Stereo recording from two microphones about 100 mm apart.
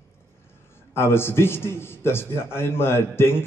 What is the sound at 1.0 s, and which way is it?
A man's voice, 25° left (ahead or behind).